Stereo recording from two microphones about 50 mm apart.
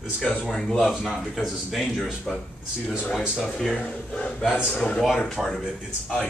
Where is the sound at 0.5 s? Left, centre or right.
Centre.